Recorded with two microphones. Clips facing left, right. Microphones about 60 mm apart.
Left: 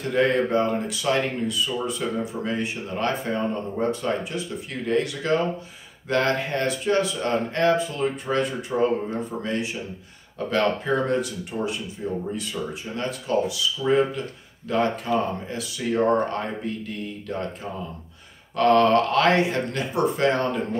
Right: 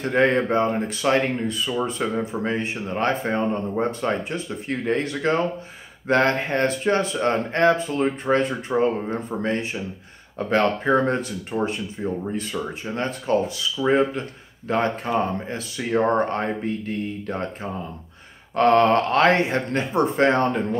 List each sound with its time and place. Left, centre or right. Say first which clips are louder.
0.0 s speech: right 2 dB; right
18.6 s speech: right 1 dB; right